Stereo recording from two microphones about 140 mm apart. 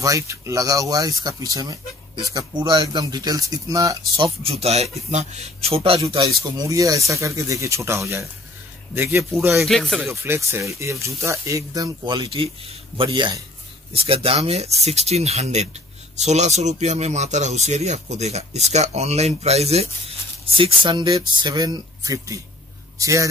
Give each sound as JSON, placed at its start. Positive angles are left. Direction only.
{"t": 0.0, "sound": "speech", "side_deg": -25}
{"t": 4.2, "sound": "speech", "side_deg": -45}
{"t": 5.9, "sound": "speech", "side_deg": -25}
{"t": 9.5, "sound": "speech", "side_deg": 0}
{"t": 10.2, "sound": "a man's voice", "side_deg": -15}
{"t": 20.5, "sound": "a man's voice", "side_deg": -35}